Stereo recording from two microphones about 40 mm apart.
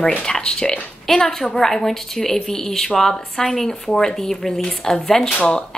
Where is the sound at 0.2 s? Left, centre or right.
Centre.